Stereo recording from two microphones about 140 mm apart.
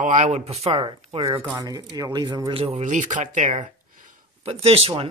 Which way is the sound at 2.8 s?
60° right (ahead or behind).